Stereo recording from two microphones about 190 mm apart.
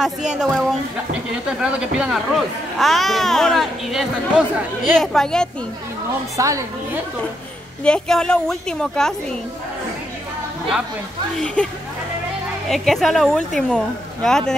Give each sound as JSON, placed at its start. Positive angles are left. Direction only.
{"t": 0.4, "sound": "speech", "side_deg": 0}
{"t": 6.3, "sound": "a woman's voice", "side_deg": -15}
{"t": 7.8, "sound": "speech", "side_deg": 5}
{"t": 11.6, "sound": "speech", "side_deg": 5}